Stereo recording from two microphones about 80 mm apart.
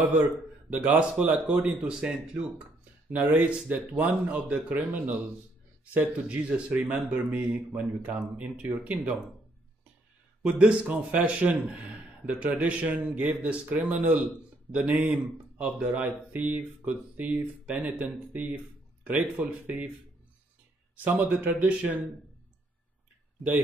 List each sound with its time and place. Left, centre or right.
0.0 s speech: centre
6.2 s speech: centre
10.4 s a man's voice: centre
21.2 s speech: right